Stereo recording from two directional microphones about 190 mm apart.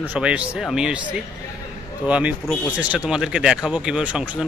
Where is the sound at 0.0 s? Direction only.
5° right (ahead or behind).